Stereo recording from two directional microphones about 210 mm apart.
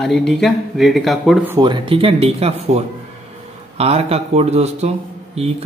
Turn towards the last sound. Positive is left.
turn(degrees=-30)  # may be behind; listen again after turning